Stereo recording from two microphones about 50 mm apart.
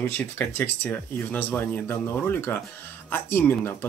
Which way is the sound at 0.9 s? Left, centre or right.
Left.